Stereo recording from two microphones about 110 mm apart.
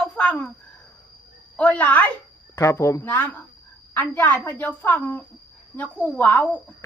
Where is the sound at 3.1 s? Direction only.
15° left (ahead or behind).